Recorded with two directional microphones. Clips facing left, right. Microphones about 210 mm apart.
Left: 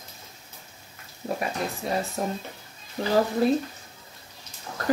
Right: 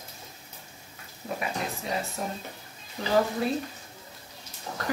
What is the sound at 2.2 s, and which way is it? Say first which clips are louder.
Speech: left 5 dB; 45° left (ahead or behind).